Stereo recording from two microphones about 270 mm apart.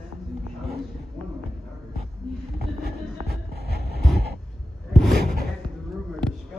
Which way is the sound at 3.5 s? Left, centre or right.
Right.